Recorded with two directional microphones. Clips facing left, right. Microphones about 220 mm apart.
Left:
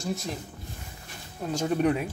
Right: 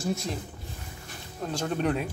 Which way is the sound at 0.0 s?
Centre (ahead or behind).